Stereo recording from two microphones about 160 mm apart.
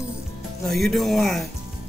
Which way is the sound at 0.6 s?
Centre (ahead or behind).